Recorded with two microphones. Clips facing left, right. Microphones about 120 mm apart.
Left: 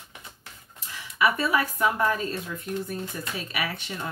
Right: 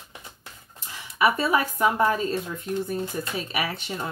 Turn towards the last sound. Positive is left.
turn(degrees=-25)  # may be behind; listen again after turning